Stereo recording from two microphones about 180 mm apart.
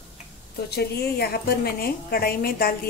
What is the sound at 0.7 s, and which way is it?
A woman's voice, 65° left (ahead or behind).